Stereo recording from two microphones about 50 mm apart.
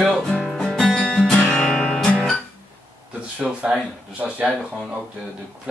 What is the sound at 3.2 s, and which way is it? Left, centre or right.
Speech, right.